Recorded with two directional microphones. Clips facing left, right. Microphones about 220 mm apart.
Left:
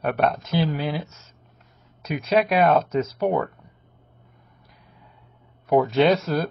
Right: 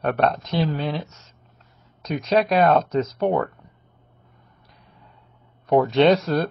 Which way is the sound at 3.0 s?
30° right (ahead or behind).